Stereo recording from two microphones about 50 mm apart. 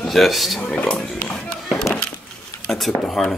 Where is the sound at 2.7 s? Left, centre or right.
Centre.